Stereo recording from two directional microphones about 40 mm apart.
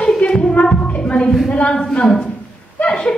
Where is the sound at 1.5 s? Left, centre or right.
Left.